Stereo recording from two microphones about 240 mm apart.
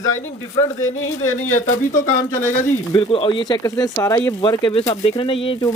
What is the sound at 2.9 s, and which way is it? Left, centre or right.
Speech, left.